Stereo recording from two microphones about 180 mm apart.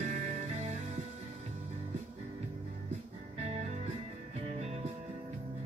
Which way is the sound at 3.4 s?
35° right (ahead or behind).